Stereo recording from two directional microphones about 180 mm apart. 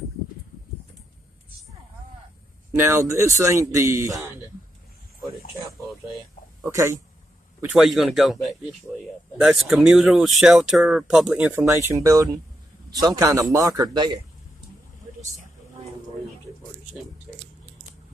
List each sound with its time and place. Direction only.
2.7 s speech: 15° right (ahead or behind)
6.6 s speech: 15° right (ahead or behind)
7.6 s a man's voice: 5° right (ahead or behind); by 14.2 s 25° right (ahead or behind)